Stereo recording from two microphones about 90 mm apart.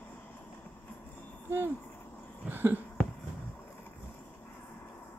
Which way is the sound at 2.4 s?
20° right (ahead or behind).